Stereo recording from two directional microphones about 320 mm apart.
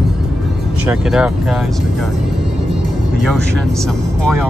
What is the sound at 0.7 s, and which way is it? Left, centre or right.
Speech, centre.